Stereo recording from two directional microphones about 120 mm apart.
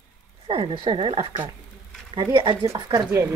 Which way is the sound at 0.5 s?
50° right (ahead or behind).